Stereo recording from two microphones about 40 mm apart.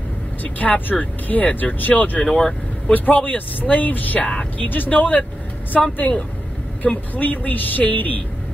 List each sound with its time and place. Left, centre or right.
0.4 s speech: left
2.2 s speech: centre
2.9 s speech: left
4.2 s speech: left
4.6 s speech: left